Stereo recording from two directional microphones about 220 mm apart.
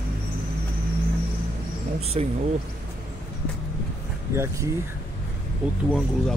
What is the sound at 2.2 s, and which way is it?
Speech, 30° right (ahead or behind).